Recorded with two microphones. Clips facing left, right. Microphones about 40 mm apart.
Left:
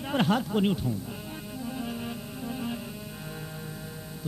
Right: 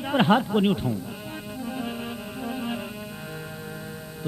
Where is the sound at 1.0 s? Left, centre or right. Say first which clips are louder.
Right 3 dB; centre.